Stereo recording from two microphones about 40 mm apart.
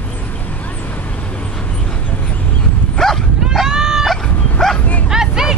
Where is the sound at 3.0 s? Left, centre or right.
Centre.